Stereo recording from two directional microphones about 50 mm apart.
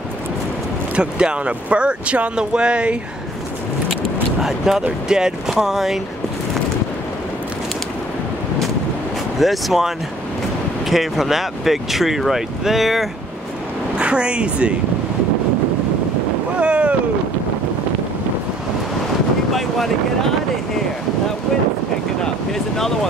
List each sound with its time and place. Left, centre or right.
0.9 s speech: centre
4.4 s speech: centre
9.4 s speech: centre
13.9 s speech: right
16.5 s boat: right
22.2 s speech: centre